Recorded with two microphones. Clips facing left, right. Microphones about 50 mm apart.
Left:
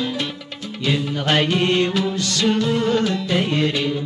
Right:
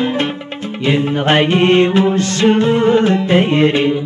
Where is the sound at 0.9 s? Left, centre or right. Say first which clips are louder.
Right 7 dB; right.